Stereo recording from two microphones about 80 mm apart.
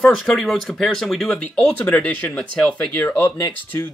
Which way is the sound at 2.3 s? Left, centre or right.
Centre.